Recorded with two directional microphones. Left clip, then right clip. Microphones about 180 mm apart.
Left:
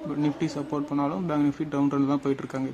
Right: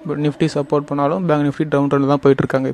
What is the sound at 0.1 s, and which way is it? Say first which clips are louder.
A man's voice: right 10 dB; 45° right (ahead or behind).